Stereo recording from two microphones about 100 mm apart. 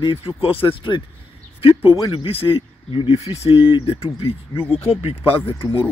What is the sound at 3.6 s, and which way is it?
Speech, 55° left (ahead or behind).